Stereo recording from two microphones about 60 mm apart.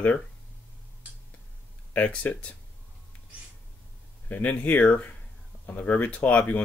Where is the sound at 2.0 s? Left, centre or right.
Left.